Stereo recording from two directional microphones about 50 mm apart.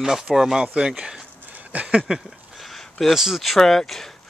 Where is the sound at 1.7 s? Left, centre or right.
Right.